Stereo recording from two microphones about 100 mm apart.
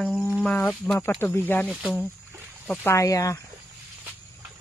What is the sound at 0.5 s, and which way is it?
Speech, 10° left (ahead or behind).